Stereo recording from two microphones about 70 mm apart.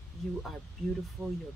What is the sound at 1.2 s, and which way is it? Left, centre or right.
Speech, right.